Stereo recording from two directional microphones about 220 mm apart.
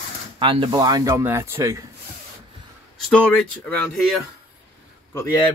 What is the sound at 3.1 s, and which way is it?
Speech, 5° left (ahead or behind).